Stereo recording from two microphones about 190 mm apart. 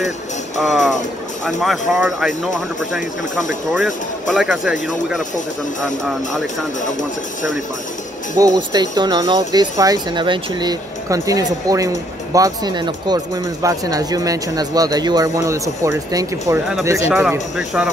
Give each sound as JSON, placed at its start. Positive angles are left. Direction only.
{"t": 0.6, "sound": "speech", "side_deg": 0}
{"t": 8.4, "sound": "speech", "side_deg": -20}
{"t": 17.1, "sound": "speech", "side_deg": -5}